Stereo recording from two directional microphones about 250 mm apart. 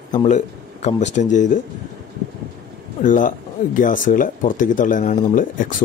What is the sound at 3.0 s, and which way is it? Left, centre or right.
A man's voice, left.